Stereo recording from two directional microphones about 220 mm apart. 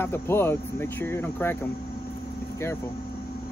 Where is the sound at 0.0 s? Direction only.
10° left (ahead or behind).